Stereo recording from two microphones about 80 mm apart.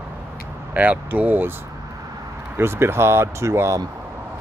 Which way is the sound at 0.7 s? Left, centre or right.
Centre.